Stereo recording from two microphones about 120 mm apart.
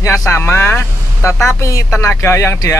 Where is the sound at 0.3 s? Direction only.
20° left (ahead or behind).